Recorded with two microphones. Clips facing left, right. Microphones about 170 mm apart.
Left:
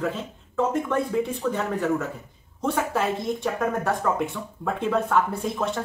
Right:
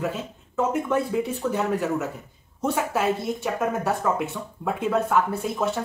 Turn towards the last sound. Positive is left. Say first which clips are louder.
# right 1 dB
turn(degrees=-5)  # may be behind; listen again after turning